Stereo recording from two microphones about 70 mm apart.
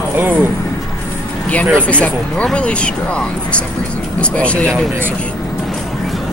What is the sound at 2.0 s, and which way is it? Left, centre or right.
Speech, centre.